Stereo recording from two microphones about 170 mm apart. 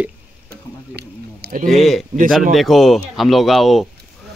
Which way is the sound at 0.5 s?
65° right (ahead or behind).